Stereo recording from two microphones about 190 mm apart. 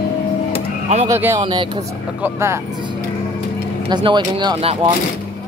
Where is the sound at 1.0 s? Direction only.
10° right (ahead or behind).